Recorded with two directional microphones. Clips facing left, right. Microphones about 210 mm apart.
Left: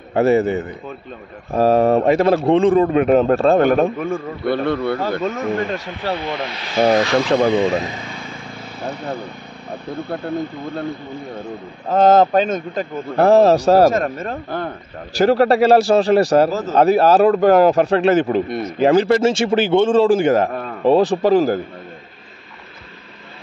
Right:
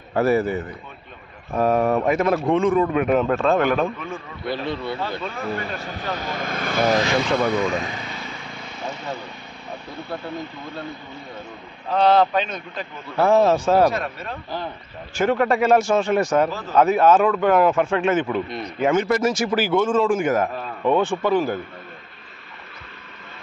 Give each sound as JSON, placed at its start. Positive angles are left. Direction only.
{"t": 0.1, "sound": "a man's voice", "side_deg": 25}
{"t": 5.1, "sound": "a man's voice", "side_deg": 45}
{"t": 6.1, "sound": "speech", "side_deg": -45}
{"t": 7.3, "sound": "vehicle", "side_deg": 25}
{"t": 10.0, "sound": "speech", "side_deg": 55}
{"t": 11.9, "sound": "a man's voice", "side_deg": 45}
{"t": 15.1, "sound": "a man's voice", "side_deg": 35}